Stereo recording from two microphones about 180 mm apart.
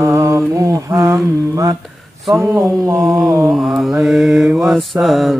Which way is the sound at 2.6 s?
Centre (ahead or behind).